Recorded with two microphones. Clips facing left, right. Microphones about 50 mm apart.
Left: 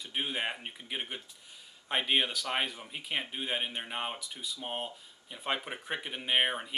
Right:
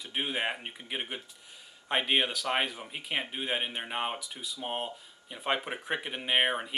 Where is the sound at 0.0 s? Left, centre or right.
Centre.